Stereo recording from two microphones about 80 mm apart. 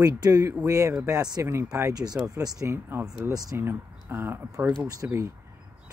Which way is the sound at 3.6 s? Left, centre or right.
Right.